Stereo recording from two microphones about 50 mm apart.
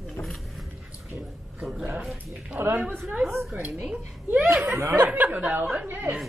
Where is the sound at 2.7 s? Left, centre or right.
Right.